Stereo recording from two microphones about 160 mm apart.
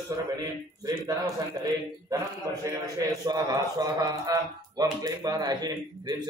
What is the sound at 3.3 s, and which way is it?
Speech, 25° right (ahead or behind).